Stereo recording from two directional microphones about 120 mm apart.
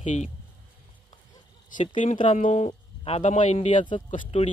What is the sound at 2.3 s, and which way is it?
Speech, 80° left.